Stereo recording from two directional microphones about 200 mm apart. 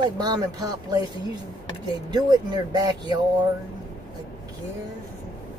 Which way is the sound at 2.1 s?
20° right (ahead or behind).